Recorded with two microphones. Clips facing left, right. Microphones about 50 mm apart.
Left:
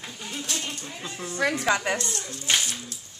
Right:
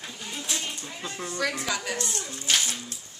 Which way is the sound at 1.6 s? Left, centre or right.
Left.